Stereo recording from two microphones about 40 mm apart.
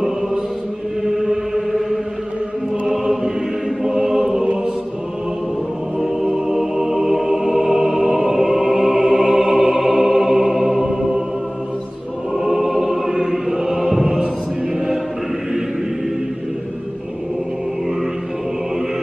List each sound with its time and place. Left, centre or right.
1.0 s chant: centre
3.8 s chant: centre
5.9 s music: centre
12.4 s choir: centre
14.0 s chant: centre